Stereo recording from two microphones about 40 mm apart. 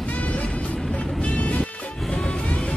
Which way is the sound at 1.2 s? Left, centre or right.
Left.